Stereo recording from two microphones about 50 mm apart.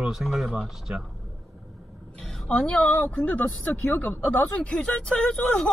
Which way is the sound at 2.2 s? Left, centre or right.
Centre.